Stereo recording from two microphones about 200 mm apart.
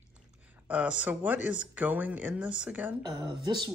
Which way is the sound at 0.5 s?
5° right (ahead or behind).